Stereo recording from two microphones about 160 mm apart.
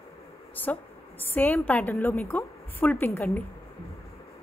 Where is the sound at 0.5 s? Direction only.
10° left (ahead or behind).